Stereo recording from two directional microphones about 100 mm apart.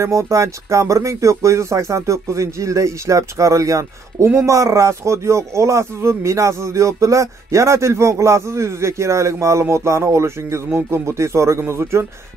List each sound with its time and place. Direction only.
0.0 s speech: 30° right (ahead or behind)